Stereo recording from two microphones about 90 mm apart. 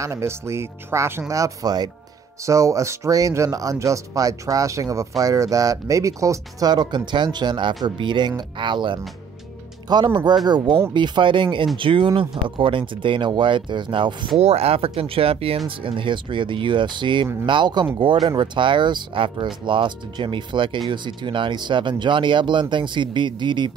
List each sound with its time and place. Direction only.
0.0 s speech: 30° right (ahead or behind); by 14.3 s 65° right (ahead or behind)
14.6 s speech: 90° right; by 23.7 s 60° right (ahead or behind)